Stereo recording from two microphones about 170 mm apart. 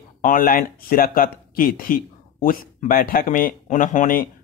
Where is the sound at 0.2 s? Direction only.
55° left (ahead or behind).